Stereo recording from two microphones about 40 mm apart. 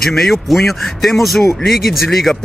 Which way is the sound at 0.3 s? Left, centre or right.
Centre.